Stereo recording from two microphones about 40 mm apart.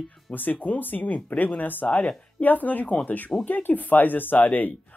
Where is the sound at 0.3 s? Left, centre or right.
Left.